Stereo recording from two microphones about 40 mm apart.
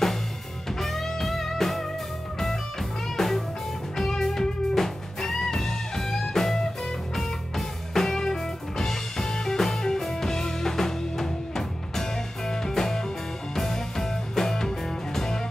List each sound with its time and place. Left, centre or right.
0.7 s music: centre
3.2 s music: centre